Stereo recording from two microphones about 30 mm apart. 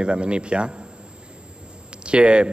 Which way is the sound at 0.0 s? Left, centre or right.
Right.